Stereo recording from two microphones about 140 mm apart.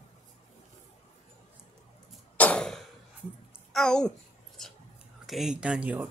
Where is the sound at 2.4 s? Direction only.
10° left (ahead or behind).